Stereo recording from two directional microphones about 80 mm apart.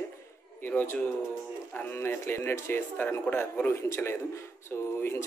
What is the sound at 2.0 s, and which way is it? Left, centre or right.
A man's voice, left.